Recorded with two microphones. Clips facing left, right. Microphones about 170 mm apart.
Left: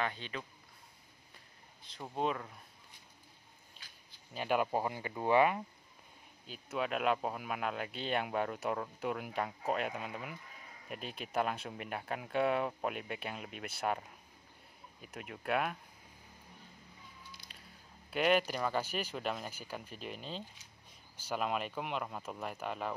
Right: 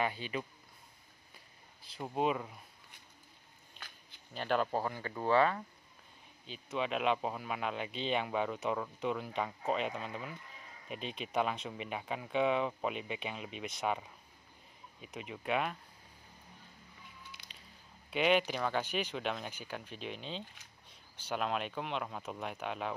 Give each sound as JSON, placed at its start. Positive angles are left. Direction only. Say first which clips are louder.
{"t": 0.0, "sound": "speech", "louder": "right 3 dB", "side_deg": -10}
{"t": 1.8, "sound": "speech", "louder": "right 2 dB", "side_deg": -5}
{"t": 4.3, "sound": "speech", "louder": "even", "side_deg": 10}
{"t": 6.4, "sound": "speech", "louder": "even", "side_deg": 5}
{"t": 15.0, "sound": "speech", "louder": "right 2 dB", "side_deg": 0}
{"t": 18.1, "sound": "speech", "louder": "even", "side_deg": 5}